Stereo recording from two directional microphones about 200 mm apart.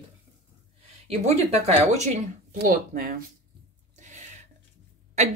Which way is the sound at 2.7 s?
45° right (ahead or behind).